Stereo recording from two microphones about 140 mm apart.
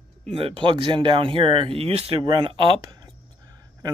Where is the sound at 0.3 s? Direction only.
40° right (ahead or behind).